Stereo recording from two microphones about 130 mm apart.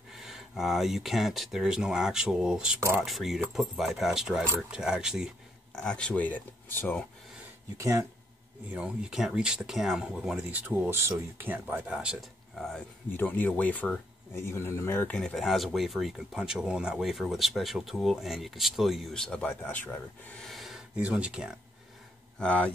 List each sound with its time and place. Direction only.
0.1 s speech: 5° right (ahead or behind)
2.8 s speech: 15° right (ahead or behind)
3.1 s speech: centre (ahead or behind)
5.8 s speech: 5° left (ahead or behind)
7.7 s speech: 25° right (ahead or behind)
8.7 s speech: 5° right (ahead or behind)
13.1 s speech: 15° left (ahead or behind)
20.4 s speech: centre (ahead or behind)
22.4 s speech: 10° left (ahead or behind)